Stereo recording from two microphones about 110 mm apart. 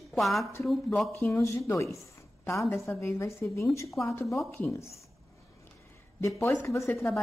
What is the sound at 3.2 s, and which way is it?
Speech, 25° left (ahead or behind).